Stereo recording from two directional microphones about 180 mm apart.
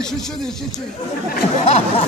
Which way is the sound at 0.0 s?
5° left (ahead or behind).